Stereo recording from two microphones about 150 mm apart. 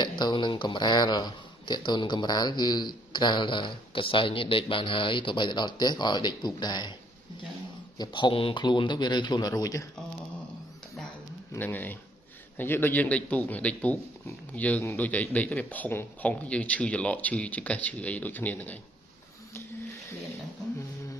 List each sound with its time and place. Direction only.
0.2 s speech: 30° left (ahead or behind)
8.0 s speech: 30° left (ahead or behind)
11.5 s speech: 10° left (ahead or behind)